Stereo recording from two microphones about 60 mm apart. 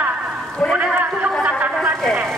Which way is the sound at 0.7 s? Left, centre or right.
Right.